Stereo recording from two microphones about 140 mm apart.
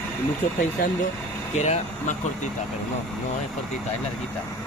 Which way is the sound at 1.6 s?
55° left (ahead or behind).